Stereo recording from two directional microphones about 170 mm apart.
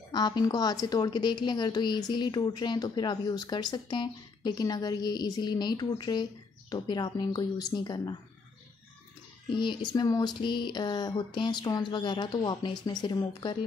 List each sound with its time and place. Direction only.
0.1 s a woman's voice: 25° left (ahead or behind)
9.5 s a woman's voice: 25° left (ahead or behind)